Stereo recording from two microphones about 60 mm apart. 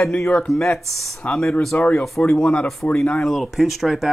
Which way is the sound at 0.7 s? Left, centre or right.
Centre.